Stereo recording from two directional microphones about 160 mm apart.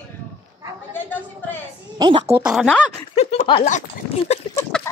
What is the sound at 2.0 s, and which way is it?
Speech, 25° right (ahead or behind).